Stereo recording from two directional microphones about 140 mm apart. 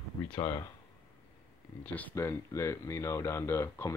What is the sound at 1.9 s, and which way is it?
Speech, 15° left (ahead or behind).